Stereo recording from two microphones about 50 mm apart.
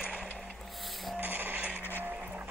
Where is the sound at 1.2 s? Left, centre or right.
Right.